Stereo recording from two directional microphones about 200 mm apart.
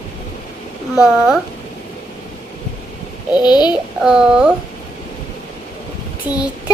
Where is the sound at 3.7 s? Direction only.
5° right (ahead or behind).